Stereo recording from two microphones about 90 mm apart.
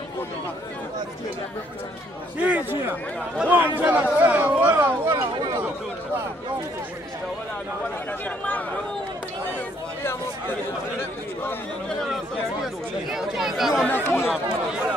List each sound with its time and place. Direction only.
2.3 s a sound: 15° right (ahead or behind)
13.1 s speech: 5° right (ahead or behind)
13.8 s speech: 25° left (ahead or behind)
14.2 s speech: 10° right (ahead or behind)